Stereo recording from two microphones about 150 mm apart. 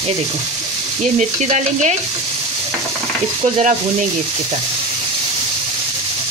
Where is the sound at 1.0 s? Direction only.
50° right (ahead or behind).